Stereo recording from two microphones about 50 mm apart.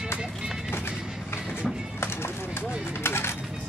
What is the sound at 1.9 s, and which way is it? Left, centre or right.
Music, left.